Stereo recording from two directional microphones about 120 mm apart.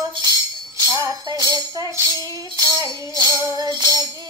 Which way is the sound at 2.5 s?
30° right (ahead or behind).